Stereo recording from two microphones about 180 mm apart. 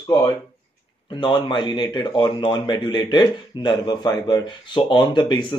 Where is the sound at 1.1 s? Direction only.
25° left (ahead or behind).